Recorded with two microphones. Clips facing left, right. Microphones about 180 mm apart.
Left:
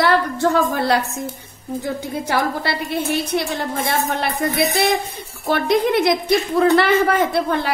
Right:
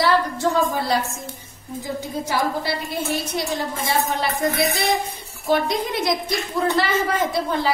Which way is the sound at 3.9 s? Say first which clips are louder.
Right 1 dB; 65° left (ahead or behind).